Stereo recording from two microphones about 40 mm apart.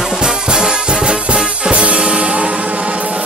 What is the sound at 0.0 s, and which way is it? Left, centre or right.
Music, centre.